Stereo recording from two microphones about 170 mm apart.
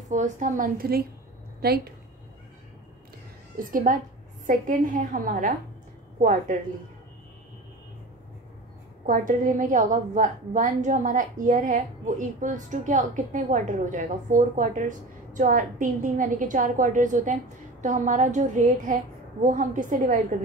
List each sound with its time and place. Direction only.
0.1 s a woman's voice: 45° right (ahead or behind); by 2.0 s 65° right (ahead or behind)
3.5 s a woman's voice: 55° right (ahead or behind)
9.0 s a woman's voice: 50° right (ahead or behind)